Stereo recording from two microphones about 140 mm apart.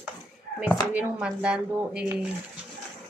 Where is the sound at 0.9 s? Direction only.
5° right (ahead or behind).